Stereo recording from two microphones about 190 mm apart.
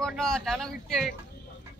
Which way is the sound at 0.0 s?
Centre (ahead or behind).